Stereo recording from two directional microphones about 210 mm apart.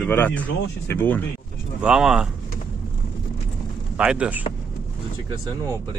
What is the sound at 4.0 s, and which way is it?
Speech, 5° right (ahead or behind).